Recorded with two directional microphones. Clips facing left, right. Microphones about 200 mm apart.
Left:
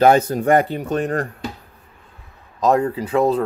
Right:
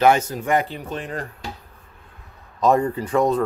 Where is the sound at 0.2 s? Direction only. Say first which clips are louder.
Left 6 dB; 60° left (ahead or behind).